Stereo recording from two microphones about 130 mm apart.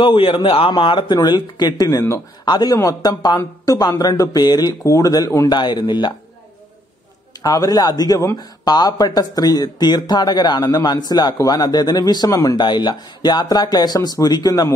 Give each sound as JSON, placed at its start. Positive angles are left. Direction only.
{"t": 0.0, "sound": "a man's voice", "side_deg": 40}
{"t": 2.4, "sound": "a man's voice", "side_deg": 35}
{"t": 5.5, "sound": "a man's voice", "side_deg": 35}
{"t": 7.4, "sound": "a man's voice", "side_deg": 30}